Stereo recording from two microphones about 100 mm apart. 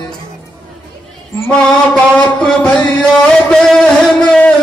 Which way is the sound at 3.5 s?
5° left (ahead or behind).